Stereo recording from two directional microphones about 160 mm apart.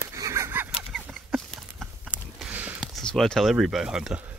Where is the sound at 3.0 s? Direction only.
5° left (ahead or behind).